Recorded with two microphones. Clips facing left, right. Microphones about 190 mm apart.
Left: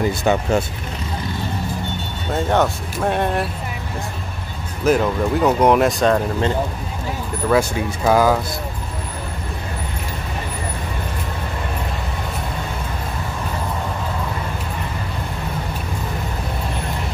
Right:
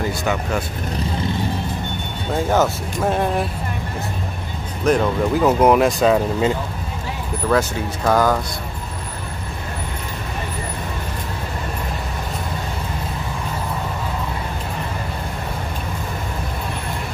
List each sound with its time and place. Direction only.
0.2 s speech: 25° left (ahead or behind)
2.3 s speech: centre (ahead or behind)
4.8 s speech: centre (ahead or behind)
7.4 s speech: 10° left (ahead or behind)